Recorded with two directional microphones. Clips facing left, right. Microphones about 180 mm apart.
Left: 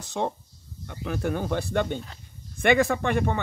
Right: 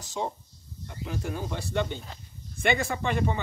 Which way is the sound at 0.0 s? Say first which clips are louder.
Left 4 dB; 60° left (ahead or behind).